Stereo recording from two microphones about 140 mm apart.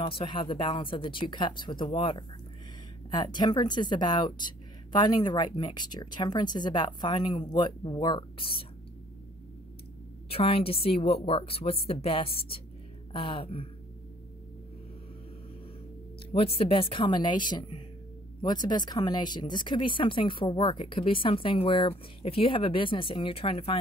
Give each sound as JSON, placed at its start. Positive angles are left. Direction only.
{"t": 0.0, "sound": "speech", "side_deg": 40}
{"t": 10.3, "sound": "speech", "side_deg": 40}
{"t": 16.3, "sound": "speech", "side_deg": 40}